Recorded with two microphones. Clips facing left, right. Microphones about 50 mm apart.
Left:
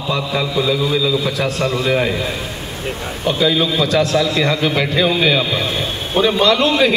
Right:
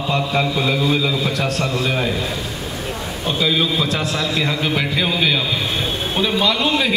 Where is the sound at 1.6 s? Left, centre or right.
Left.